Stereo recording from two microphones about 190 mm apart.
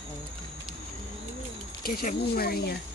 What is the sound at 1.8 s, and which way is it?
Speech, 50° left (ahead or behind).